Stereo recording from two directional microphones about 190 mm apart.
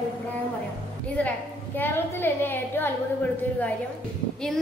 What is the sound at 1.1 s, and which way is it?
A woman's voice, 10° left (ahead or behind).